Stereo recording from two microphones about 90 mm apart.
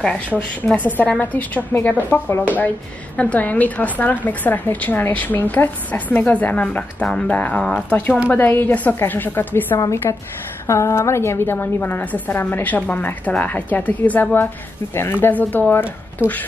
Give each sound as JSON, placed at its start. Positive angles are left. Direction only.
{"t": 0.4, "sound": "a woman's voice", "side_deg": 15}
{"t": 9.8, "sound": "a woman's voice", "side_deg": 35}